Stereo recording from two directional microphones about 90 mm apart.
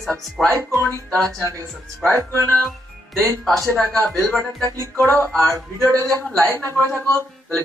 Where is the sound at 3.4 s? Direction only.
Centre (ahead or behind).